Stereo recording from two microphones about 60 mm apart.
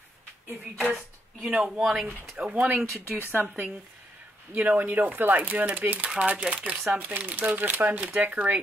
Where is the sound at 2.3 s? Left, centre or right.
Right.